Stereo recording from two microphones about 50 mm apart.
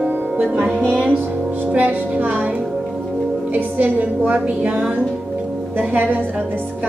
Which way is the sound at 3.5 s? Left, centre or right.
Right.